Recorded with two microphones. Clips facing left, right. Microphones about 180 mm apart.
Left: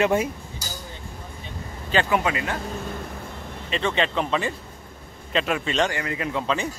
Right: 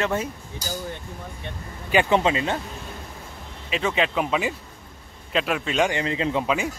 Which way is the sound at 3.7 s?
5° right (ahead or behind).